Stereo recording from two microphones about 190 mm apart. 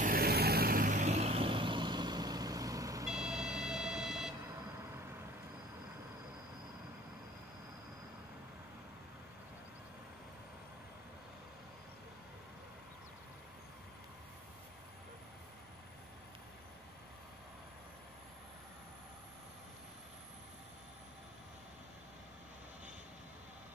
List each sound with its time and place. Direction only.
0.0 s vehicle: 50° right (ahead or behind); by 3.1 s 20° right (ahead or behind)
3.1 s vehicle: 5° right (ahead or behind)